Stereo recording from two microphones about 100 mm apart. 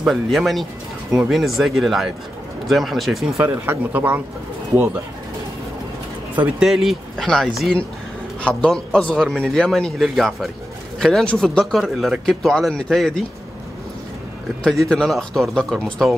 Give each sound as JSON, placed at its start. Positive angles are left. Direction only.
{"t": 0.0, "sound": "speech", "side_deg": 0}
{"t": 3.3, "sound": "speech", "side_deg": -20}
{"t": 6.3, "sound": "speech", "side_deg": -15}
{"t": 6.7, "sound": "a man's voice", "side_deg": 0}
{"t": 14.6, "sound": "speech", "side_deg": 5}